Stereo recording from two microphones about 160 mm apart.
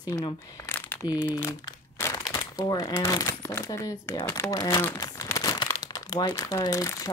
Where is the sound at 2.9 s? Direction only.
20° left (ahead or behind).